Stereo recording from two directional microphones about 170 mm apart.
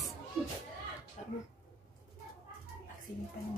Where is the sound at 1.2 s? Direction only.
45° left (ahead or behind).